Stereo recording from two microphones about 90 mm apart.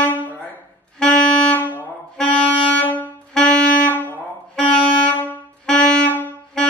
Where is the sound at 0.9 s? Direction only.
15° left (ahead or behind).